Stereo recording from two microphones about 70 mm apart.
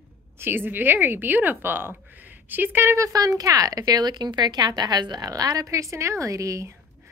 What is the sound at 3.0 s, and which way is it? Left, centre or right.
Speech, right.